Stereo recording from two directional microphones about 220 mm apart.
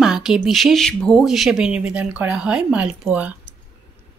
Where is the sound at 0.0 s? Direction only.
Centre (ahead or behind).